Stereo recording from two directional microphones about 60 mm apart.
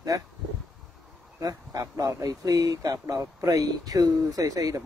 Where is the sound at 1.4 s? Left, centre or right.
Right.